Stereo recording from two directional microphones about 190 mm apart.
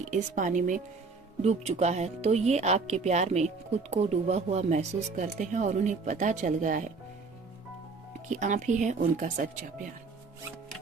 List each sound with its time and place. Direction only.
0.1 s speech: 40° right (ahead or behind)
8.3 s speech: 40° right (ahead or behind)